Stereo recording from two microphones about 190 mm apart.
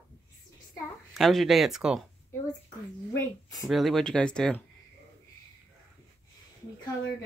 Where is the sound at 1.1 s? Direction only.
Centre (ahead or behind).